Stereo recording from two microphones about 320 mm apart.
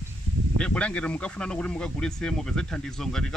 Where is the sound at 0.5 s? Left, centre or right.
Centre.